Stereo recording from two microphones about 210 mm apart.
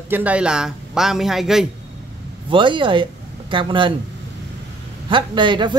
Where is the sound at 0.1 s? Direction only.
5° right (ahead or behind).